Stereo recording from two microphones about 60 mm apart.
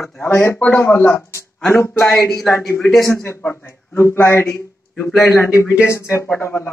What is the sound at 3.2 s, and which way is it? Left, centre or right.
Speech, left.